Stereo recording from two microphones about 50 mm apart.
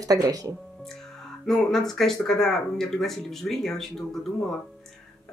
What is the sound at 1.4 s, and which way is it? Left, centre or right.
Speech, centre.